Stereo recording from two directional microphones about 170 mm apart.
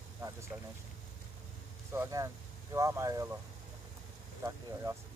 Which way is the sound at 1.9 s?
15° right (ahead or behind).